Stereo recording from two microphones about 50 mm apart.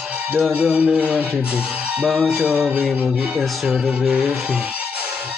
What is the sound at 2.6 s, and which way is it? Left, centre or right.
Mantra, right.